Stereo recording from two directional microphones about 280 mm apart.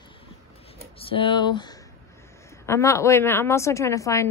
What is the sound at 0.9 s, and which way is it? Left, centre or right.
A woman's voice, centre.